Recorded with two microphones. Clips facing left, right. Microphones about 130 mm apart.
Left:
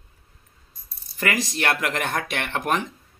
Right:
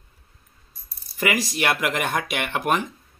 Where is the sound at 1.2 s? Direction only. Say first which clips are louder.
Right 1 dB; 10° right (ahead or behind).